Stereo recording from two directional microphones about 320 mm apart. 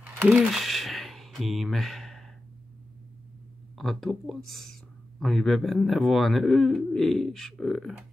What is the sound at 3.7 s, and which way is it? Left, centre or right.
Speech, centre.